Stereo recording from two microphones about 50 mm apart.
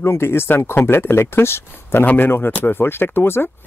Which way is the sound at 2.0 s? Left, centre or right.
Left.